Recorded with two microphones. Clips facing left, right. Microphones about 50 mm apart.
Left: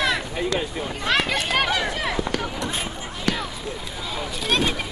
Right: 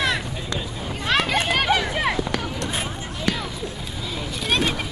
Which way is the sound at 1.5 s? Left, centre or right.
Centre.